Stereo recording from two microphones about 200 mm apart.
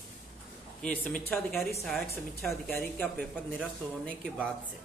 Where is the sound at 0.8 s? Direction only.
5° left (ahead or behind).